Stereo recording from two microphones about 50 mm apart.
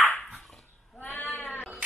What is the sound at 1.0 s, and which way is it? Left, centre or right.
Bleat, left.